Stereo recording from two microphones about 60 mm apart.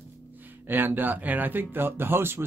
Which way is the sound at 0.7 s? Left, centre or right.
Right.